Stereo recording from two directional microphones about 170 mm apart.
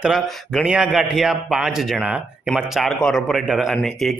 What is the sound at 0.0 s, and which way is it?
A man's voice, centre (ahead or behind).